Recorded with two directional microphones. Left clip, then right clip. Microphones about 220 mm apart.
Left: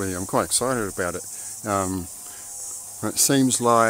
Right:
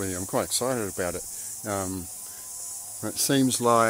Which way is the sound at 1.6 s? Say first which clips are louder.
Left 6 dB; 20° left (ahead or behind).